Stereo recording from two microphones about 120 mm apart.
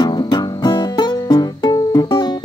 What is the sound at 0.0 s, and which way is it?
Music, 40° left (ahead or behind).